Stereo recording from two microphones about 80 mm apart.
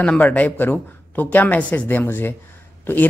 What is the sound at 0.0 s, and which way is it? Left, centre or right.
A woman's voice, centre.